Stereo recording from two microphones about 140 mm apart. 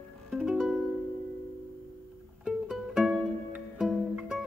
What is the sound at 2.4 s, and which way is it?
Music, 5° right (ahead or behind).